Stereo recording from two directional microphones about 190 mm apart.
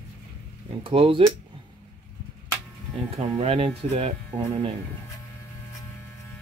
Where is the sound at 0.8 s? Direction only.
30° right (ahead or behind).